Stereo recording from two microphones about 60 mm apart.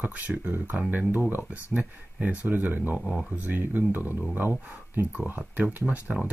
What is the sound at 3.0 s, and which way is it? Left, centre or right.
Speech, centre.